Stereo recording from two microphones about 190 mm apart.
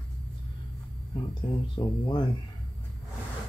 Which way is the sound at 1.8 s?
25° left (ahead or behind).